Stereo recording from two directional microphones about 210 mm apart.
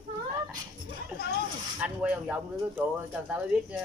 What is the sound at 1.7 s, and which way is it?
Speech, 5° right (ahead or behind).